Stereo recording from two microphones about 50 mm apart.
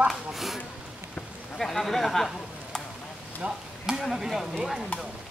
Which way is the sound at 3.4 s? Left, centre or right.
Centre.